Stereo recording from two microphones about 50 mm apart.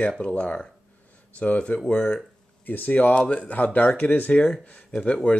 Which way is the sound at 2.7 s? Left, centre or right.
Left.